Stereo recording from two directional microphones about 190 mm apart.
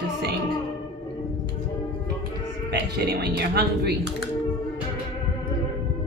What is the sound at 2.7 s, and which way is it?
A man's voice, 60° right (ahead or behind).